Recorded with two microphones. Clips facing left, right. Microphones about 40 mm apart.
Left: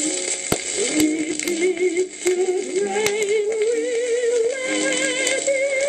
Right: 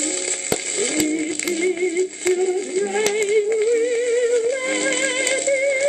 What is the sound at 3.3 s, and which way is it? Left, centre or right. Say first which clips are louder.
Music: right 2 dB; centre.